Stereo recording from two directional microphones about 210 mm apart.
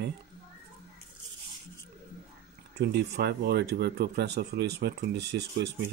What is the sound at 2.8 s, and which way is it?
Speech, 50° right (ahead or behind).